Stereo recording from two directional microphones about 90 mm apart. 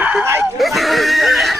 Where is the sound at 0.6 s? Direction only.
Centre (ahead or behind).